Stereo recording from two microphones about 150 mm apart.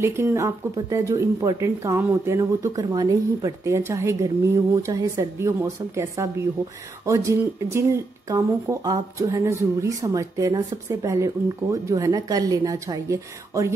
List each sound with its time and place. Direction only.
0.0 s speech: 15° right (ahead or behind)